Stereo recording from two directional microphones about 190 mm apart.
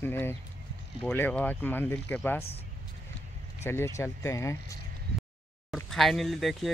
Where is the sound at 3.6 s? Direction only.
15° left (ahead or behind).